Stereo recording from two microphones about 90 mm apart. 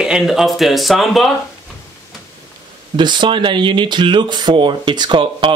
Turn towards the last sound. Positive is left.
turn(degrees=-65)  # may be behind; listen again after turning